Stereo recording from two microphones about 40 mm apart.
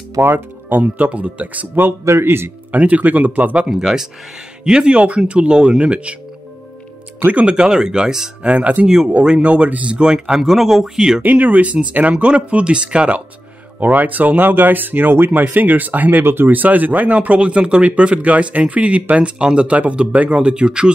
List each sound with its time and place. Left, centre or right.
0.2 s speech: right
0.7 s speech: right
1.8 s speech: right
2.7 s speech: right
3.7 s speech: centre
4.6 s speech: right
7.4 s speech: right
8.4 s speech: right
8.8 s speech: centre
9.4 s speech: right
9.8 s speech: right
11.2 s speech: right
13.7 s speech: right